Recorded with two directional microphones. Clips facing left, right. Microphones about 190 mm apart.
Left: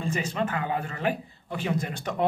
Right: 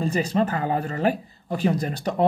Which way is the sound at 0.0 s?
35° right (ahead or behind).